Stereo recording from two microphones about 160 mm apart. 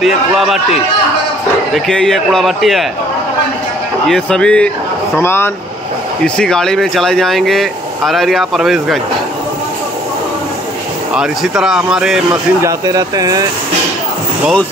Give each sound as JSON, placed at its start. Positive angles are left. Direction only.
{"t": 0.0, "sound": "speech", "side_deg": 0}
{"t": 1.7, "sound": "speech", "side_deg": 5}
{"t": 4.1, "sound": "speech", "side_deg": 5}
{"t": 11.1, "sound": "speech", "side_deg": -5}
{"t": 12.6, "sound": "speech", "side_deg": -25}